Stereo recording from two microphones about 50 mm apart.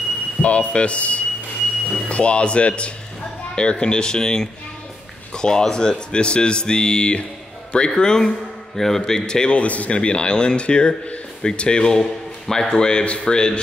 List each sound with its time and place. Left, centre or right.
0.4 s a man's voice: left